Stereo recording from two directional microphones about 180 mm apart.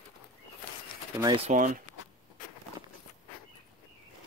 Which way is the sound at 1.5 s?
45° right (ahead or behind).